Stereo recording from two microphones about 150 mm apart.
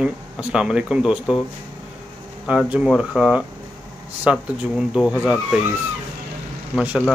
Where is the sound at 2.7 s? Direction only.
5° right (ahead or behind).